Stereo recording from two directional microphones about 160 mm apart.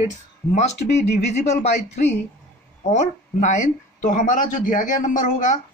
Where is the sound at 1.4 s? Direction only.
45° left (ahead or behind).